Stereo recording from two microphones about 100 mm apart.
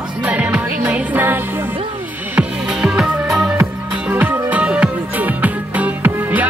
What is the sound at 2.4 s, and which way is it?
Music, 5° right (ahead or behind).